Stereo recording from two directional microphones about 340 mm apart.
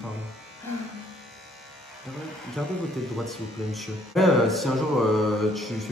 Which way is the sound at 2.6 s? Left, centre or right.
Centre.